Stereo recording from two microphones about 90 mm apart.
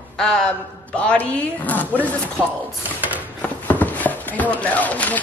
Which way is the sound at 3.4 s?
20° left (ahead or behind).